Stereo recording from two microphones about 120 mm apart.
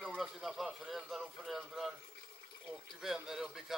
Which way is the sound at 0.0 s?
Centre (ahead or behind).